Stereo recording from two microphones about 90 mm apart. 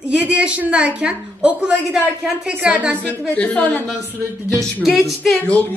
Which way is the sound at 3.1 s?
15° left (ahead or behind).